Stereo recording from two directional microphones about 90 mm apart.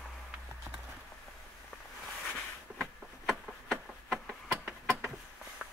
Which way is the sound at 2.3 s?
5° left (ahead or behind).